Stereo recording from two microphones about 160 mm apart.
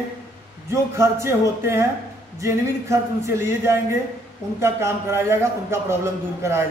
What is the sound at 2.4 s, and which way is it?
A man's voice, 20° right (ahead or behind).